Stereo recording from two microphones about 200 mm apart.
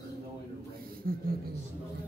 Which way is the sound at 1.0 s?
45° right (ahead or behind).